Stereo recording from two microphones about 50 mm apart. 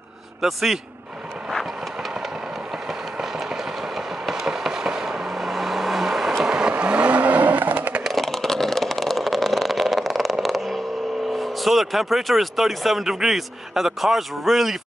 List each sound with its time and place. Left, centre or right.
0.4 s speech: centre
3.2 s a sound: centre
6.4 s vehicle: centre; by 8.0 s right
8.1 s vehicle: centre
11.3 s speech: centre